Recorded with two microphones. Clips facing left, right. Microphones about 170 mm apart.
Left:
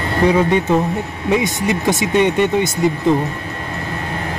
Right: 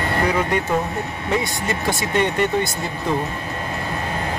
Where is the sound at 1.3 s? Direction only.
20° left (ahead or behind).